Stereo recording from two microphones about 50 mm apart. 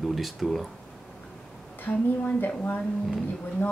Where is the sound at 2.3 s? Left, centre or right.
Left.